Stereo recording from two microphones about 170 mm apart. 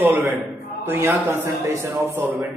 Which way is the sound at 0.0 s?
10° right (ahead or behind).